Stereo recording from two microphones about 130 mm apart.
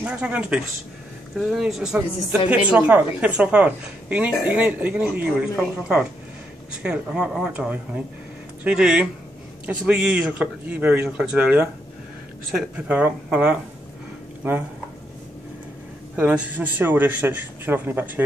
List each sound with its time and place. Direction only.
0.0 s a woman's voice: 10° right (ahead or behind)
16.2 s a woman's voice: 15° right (ahead or behind)